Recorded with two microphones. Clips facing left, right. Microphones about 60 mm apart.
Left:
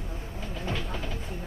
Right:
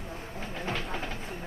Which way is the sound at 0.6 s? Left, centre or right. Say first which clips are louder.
Even; right.